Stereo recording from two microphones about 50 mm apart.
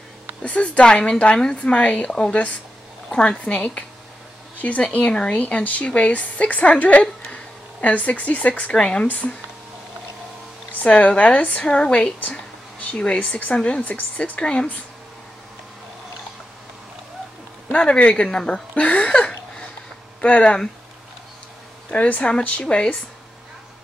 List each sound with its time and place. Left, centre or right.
0.4 s speech: left
8.7 s speech: centre
9.0 s speech: left
10.7 s speech: left
12.2 s a sound: left
12.9 s speech: left
17.7 s speech: left
18.8 s a sound: left
20.2 s speech: left
21.9 s speech: left